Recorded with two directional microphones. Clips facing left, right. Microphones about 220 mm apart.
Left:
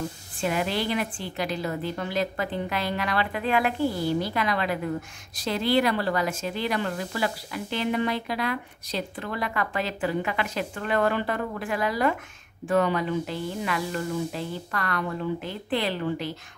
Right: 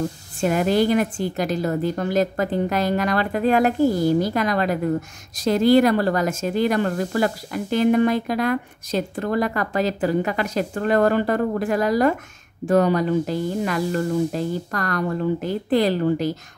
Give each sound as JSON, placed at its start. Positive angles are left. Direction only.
{"t": 0.4, "sound": "a woman's voice", "side_deg": -45}